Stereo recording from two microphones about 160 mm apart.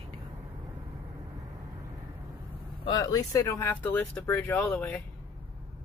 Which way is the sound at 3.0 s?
20° left (ahead or behind).